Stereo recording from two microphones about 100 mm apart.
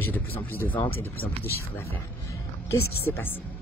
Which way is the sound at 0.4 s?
15° left (ahead or behind).